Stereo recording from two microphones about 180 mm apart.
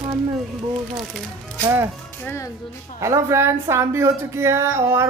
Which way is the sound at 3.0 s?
15° right (ahead or behind).